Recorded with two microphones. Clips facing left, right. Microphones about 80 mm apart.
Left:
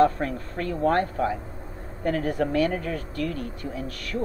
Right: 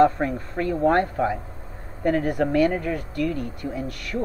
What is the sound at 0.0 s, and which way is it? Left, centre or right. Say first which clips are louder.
Speech: right 3 dB; right.